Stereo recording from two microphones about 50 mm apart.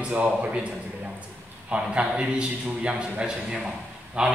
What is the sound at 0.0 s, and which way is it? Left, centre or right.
Speech, right.